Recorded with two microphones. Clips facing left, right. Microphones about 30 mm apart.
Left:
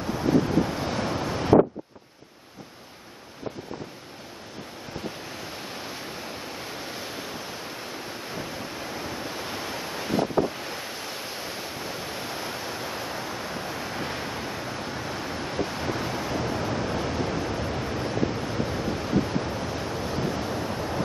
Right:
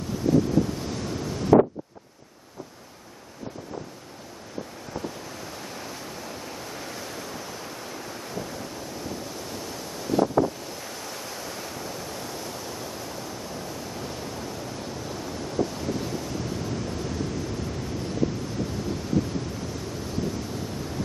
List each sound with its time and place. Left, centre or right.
0.3 s waves: left
5.4 s waves: left